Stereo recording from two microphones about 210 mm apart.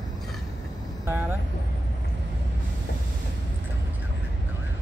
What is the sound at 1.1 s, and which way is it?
Vehicle, 10° right (ahead or behind).